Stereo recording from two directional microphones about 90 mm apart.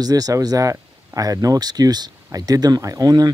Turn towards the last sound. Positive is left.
turn(degrees=-45)  # may be behind; listen again after turning